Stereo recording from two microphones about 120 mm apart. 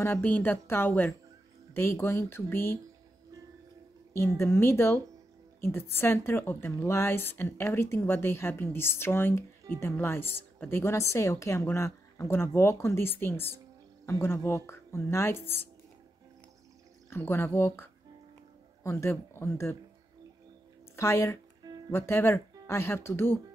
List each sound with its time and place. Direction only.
0.0 s a woman's voice: 20° left (ahead or behind)
4.4 s a woman's voice: 20° left (ahead or behind)
17.1 s a woman's voice: 20° left (ahead or behind)
20.9 s a woman's voice: 20° left (ahead or behind)